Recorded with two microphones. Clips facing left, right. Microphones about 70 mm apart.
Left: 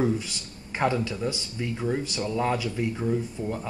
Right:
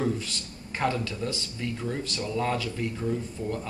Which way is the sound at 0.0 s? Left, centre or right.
Centre.